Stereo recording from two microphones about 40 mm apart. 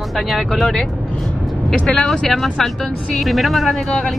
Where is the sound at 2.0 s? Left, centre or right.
Centre.